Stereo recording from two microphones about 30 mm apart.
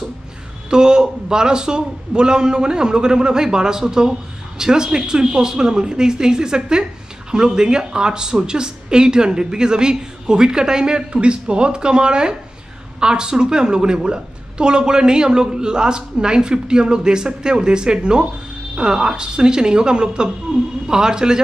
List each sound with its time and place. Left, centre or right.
0.7 s a woman's voice: right